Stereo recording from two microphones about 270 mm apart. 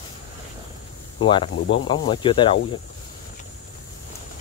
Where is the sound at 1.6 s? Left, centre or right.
Left.